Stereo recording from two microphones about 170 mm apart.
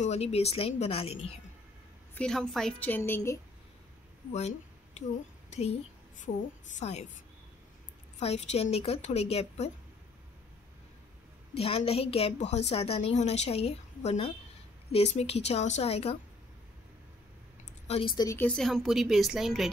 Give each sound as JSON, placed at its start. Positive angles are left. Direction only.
{"t": 0.0, "sound": "a woman's voice", "side_deg": 40}
{"t": 2.1, "sound": "a woman's voice", "side_deg": 5}
{"t": 4.3, "sound": "a woman's voice", "side_deg": 40}
{"t": 8.2, "sound": "a woman's voice", "side_deg": 40}
{"t": 11.5, "sound": "a woman's voice", "side_deg": 35}
{"t": 17.8, "sound": "speech", "side_deg": 35}
{"t": 18.1, "sound": "speech", "side_deg": 20}
{"t": 18.5, "sound": "speech", "side_deg": 0}